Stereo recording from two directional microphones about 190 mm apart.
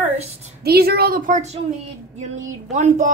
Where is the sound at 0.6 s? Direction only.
55° right (ahead or behind).